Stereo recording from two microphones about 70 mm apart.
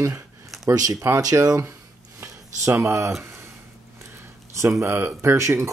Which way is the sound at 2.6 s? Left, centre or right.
Right.